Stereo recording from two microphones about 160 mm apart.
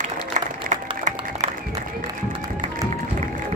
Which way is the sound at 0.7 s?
50° right (ahead or behind).